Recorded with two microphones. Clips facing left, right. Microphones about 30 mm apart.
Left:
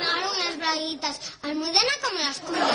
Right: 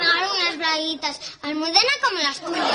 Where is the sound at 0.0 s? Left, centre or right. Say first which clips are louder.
Right 6 dB; right.